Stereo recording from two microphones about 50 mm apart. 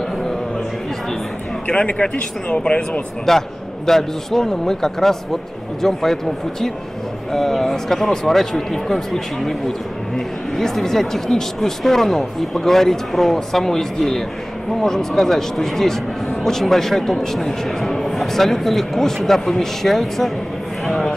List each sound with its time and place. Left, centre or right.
1.7 s speech: centre
3.3 s a man's voice: centre
7.3 s a man's voice: centre
20.8 s a sound: centre